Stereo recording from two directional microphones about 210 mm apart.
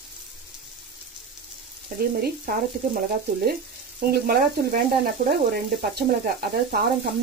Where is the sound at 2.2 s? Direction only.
45° right (ahead or behind).